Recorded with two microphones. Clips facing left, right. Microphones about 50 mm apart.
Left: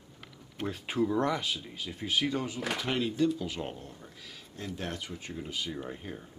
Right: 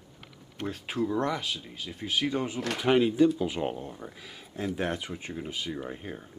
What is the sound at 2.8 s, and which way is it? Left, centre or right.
Speech, centre.